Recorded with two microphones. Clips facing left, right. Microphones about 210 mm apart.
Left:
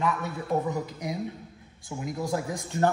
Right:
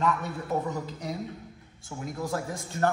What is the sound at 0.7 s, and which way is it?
Speech, 15° left (ahead or behind).